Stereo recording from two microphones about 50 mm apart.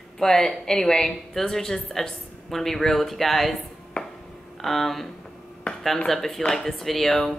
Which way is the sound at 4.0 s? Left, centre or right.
Left.